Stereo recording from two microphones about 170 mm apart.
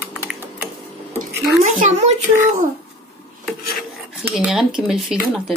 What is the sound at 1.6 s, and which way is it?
Speech, 45° right (ahead or behind).